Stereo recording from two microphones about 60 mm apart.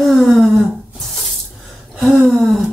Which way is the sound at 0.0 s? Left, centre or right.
Centre.